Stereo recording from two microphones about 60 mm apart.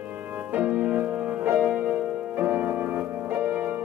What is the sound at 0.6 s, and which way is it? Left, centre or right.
Music, centre.